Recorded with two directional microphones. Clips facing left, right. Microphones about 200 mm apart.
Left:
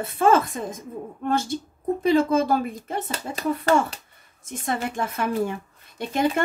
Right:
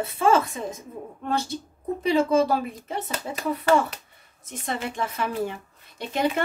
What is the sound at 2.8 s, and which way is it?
Speech, 50° left (ahead or behind).